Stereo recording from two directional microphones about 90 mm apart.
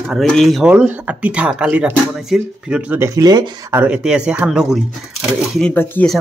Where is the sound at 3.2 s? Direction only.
50° right (ahead or behind).